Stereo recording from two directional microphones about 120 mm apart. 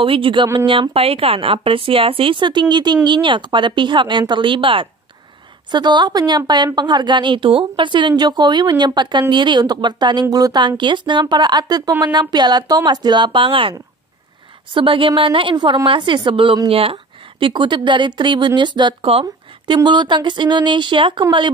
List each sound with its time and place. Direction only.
0.0 s a woman's voice: 45° right (ahead or behind)
19.7 s speech: 40° right (ahead or behind)